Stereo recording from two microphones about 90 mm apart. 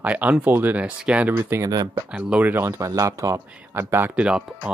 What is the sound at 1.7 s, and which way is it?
Speech, 45° right (ahead or behind).